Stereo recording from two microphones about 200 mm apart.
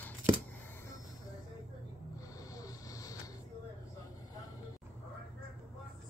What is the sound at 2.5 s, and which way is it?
Vehicle, 15° left (ahead or behind).